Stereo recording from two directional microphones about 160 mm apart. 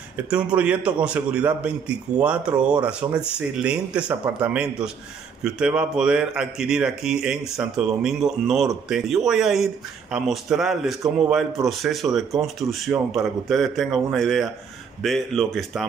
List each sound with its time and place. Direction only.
0.3 s a man's voice: 5° right (ahead or behind)